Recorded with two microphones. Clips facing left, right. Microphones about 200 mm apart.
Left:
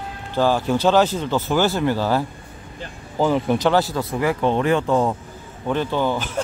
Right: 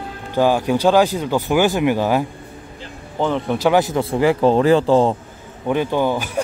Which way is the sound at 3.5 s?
10° right (ahead or behind).